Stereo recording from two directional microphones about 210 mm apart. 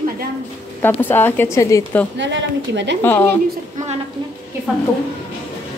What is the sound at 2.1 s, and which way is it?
Speech, 55° right (ahead or behind).